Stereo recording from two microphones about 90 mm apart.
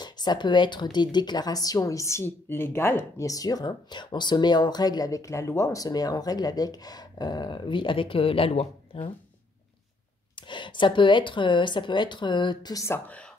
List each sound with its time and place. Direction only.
0.0 s speech: 50° left (ahead or behind); by 3.3 s 25° left (ahead or behind)
3.3 s speech: 45° left (ahead or behind); by 9.1 s 90° left
10.3 s speech: 60° left (ahead or behind)
12.7 s speech: 30° left (ahead or behind)
13.0 s speech: 15° left (ahead or behind)